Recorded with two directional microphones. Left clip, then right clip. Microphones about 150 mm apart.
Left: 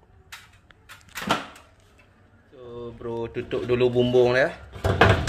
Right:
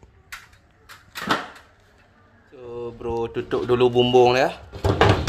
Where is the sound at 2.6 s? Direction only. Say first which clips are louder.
Right 5 dB; 15° right (ahead or behind).